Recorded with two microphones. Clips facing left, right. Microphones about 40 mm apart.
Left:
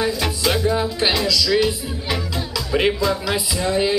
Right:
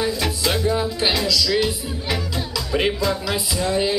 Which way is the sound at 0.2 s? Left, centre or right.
Centre.